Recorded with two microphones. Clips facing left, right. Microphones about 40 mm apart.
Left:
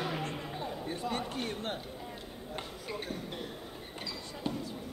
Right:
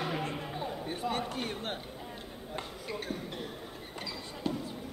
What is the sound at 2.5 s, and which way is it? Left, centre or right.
Basketball bounce, centre.